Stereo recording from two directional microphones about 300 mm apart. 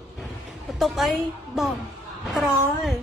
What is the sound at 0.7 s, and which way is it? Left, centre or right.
A woman's voice, centre.